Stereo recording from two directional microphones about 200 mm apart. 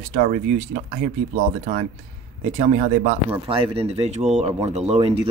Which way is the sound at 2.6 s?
35° right (ahead or behind).